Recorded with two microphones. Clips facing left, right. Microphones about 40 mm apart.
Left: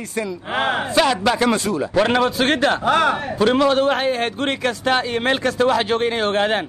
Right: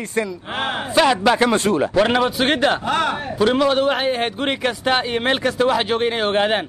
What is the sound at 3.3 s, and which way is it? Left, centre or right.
A man's voice, centre.